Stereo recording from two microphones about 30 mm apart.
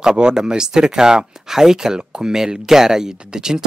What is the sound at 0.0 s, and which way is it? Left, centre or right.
Speech, right.